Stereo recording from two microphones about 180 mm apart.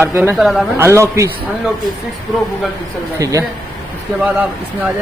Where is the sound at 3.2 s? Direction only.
20° right (ahead or behind).